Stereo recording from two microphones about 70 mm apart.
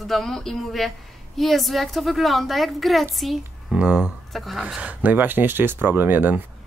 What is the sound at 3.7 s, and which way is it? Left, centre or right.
Speech, centre.